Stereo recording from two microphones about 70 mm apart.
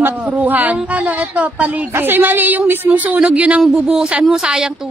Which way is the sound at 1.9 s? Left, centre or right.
Right.